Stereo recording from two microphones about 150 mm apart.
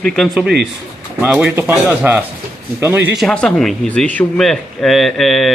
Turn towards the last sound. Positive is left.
turn(degrees=0)  # may be behind; listen again after turning